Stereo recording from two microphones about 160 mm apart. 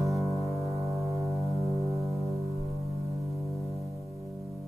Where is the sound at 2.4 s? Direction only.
40° right (ahead or behind).